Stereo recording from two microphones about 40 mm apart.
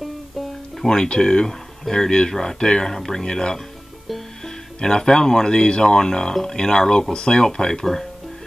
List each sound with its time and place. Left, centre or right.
0.8 s speech: centre
4.7 s speech: centre